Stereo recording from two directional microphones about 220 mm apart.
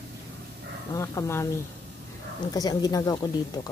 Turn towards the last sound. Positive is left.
turn(degrees=20)  # may be behind; listen again after turning